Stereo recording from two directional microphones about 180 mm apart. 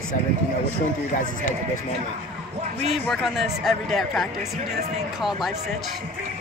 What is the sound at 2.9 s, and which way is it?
A man's voice, centre (ahead or behind).